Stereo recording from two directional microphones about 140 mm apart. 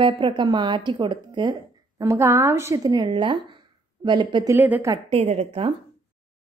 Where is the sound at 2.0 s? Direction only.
20° right (ahead or behind).